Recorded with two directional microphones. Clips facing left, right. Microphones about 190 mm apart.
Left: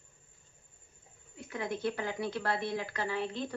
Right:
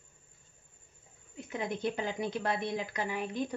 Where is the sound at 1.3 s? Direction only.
20° right (ahead or behind).